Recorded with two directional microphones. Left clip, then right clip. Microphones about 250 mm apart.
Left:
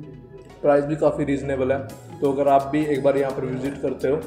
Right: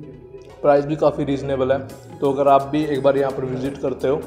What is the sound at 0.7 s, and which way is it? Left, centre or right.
A man's voice, centre.